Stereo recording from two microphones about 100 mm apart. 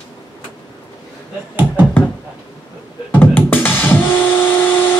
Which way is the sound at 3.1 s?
20° left (ahead or behind).